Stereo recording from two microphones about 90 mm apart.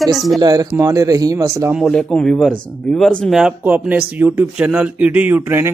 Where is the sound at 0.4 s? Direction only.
45° right (ahead or behind).